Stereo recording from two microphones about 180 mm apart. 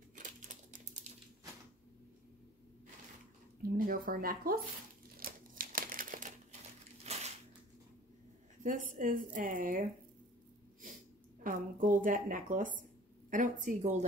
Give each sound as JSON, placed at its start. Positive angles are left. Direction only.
{"t": 0.1, "sound": "typing", "side_deg": -45}
{"t": 3.7, "sound": "a woman's voice", "side_deg": -50}
{"t": 5.1, "sound": "crumpling", "side_deg": -50}
{"t": 7.1, "sound": "crushing", "side_deg": -35}
{"t": 8.9, "sound": "a woman's voice", "side_deg": -50}
{"t": 11.4, "sound": "a woman's voice", "side_deg": -50}